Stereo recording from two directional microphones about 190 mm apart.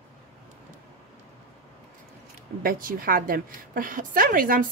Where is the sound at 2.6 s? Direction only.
50° right (ahead or behind).